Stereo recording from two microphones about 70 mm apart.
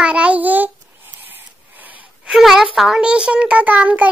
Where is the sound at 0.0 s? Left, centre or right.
Centre.